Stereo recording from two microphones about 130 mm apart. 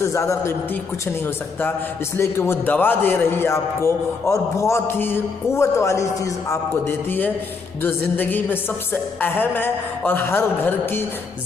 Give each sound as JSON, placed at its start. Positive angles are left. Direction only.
{"t": 0.0, "sound": "a man's voice", "side_deg": 20}